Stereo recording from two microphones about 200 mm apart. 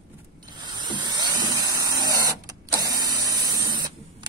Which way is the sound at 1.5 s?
20° right (ahead or behind).